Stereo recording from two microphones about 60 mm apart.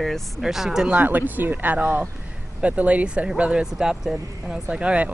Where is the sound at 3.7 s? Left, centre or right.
Centre.